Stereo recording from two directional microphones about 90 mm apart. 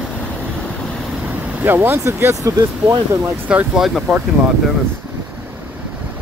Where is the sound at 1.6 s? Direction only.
25° right (ahead or behind).